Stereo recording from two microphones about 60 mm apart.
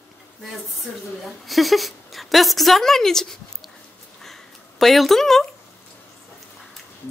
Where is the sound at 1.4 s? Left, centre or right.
Centre.